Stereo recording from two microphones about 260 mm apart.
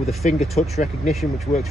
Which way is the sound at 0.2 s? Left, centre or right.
Left.